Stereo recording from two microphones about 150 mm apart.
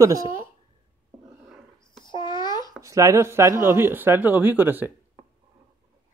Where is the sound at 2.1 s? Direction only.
30° left (ahead or behind).